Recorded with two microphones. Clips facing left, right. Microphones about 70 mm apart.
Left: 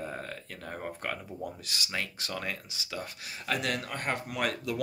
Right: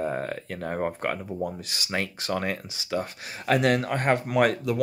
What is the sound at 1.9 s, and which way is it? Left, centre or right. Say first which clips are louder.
Speech: right 9 dB; right.